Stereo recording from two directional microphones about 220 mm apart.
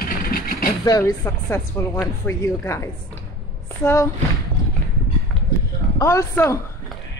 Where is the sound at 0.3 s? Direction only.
40° left (ahead or behind).